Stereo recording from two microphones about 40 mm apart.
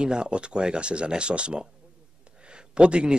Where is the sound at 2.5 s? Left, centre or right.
Right.